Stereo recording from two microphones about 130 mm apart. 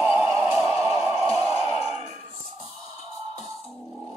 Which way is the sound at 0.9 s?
5° right (ahead or behind).